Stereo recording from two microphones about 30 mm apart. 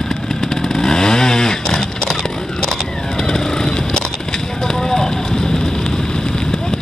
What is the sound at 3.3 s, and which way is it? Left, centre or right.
Vehicle, centre.